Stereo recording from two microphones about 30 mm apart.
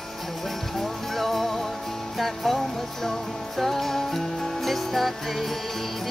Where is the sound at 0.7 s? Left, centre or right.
Centre.